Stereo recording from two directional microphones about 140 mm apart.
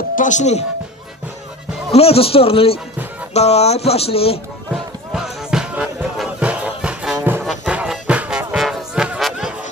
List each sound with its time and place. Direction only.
0.1 s speech: 65° left (ahead or behind)
1.9 s speech: 45° left (ahead or behind)
4.7 s music: 5° right (ahead or behind)